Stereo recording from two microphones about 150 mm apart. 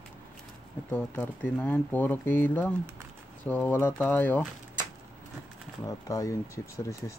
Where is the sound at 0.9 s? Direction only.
10° left (ahead or behind).